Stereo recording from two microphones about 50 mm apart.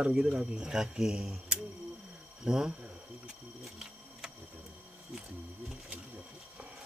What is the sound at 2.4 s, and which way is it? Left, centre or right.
Speech, centre.